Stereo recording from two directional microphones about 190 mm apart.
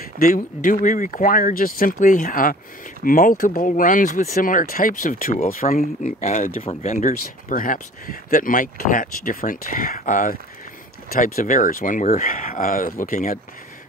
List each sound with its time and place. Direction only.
0.2 s speech: 45° left (ahead or behind)